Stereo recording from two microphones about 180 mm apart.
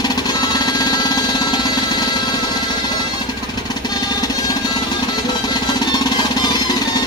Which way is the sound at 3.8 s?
20° left (ahead or behind).